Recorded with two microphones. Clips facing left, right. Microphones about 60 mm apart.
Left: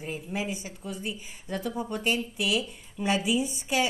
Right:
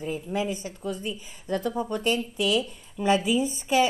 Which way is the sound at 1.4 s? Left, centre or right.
Right.